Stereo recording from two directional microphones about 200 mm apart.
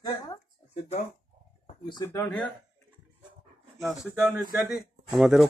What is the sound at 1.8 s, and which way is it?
Speech, 25° left (ahead or behind).